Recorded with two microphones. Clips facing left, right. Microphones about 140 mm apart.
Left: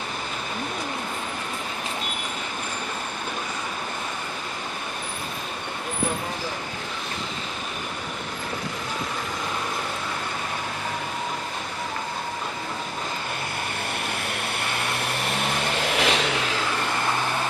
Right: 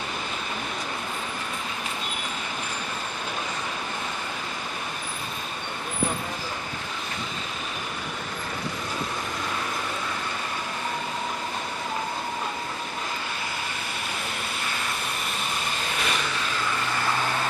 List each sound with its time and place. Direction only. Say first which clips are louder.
15.2 s vehicle: left 5 dB; 75° left (ahead or behind)